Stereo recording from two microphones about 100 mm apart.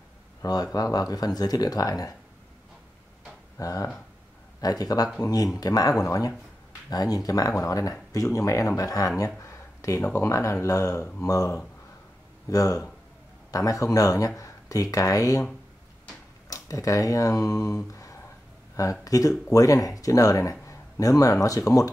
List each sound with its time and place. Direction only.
0.4 s speech: 40° left (ahead or behind)
3.5 s speech: 35° left (ahead or behind)
16.4 s speech: 35° left (ahead or behind)